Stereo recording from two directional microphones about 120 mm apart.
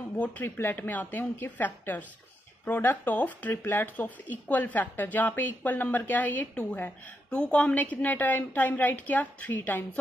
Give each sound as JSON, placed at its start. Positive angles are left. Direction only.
{"t": 0.2, "sound": "speech", "side_deg": 15}